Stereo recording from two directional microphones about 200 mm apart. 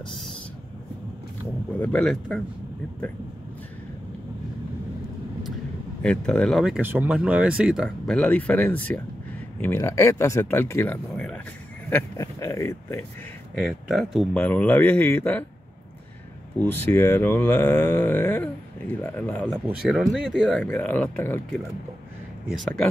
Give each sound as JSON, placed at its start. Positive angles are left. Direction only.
{"t": 1.8, "sound": "speech", "side_deg": 5}
{"t": 6.0, "sound": "speech", "side_deg": 5}
{"t": 13.6, "sound": "speech", "side_deg": 0}
{"t": 16.5, "sound": "speech", "side_deg": 10}